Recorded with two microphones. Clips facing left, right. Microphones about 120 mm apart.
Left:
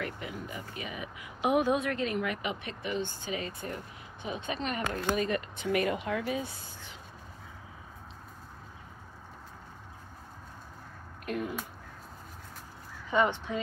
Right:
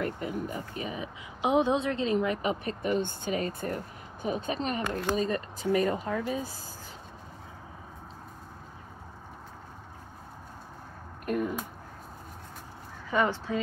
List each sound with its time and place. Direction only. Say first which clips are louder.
0.0 s speech: right 6 dB; 40° right (ahead or behind)
11.2 s speech: right 5 dB; 45° right (ahead or behind)
13.1 s speech: even; 20° left (ahead or behind)